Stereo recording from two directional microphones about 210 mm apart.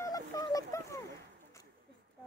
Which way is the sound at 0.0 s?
15° left (ahead or behind).